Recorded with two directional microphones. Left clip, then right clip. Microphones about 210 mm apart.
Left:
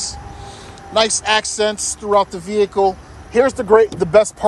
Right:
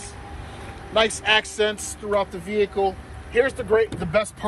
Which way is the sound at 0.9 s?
10° left (ahead or behind).